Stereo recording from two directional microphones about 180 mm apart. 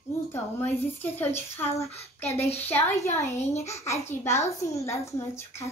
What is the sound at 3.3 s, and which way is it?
Speech, 40° left (ahead or behind).